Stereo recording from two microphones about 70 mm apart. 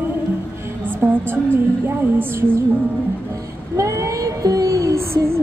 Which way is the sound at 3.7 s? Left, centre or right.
Right.